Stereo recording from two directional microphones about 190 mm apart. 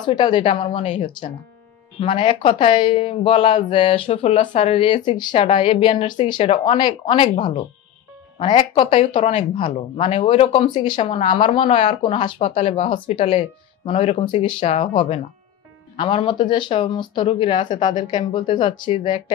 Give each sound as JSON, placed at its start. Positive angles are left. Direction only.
{"t": 0.0, "sound": "speech", "side_deg": 25}